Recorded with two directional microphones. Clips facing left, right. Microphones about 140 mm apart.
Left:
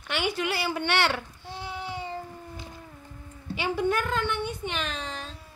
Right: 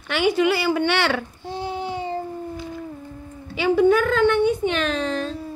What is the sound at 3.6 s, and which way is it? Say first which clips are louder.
A woman's voice: right 10 dB; 90° right.